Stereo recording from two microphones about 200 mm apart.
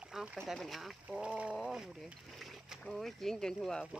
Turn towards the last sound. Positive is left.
turn(degrees=5)  # may be behind; listen again after turning